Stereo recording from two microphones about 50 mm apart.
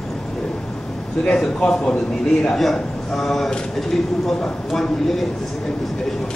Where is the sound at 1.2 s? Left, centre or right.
Centre.